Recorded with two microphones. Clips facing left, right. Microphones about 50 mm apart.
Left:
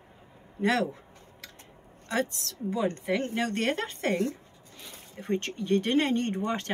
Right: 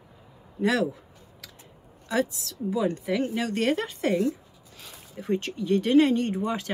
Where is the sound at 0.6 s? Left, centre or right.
Left.